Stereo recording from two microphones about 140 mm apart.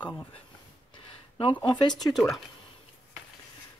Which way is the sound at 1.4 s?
35° left (ahead or behind).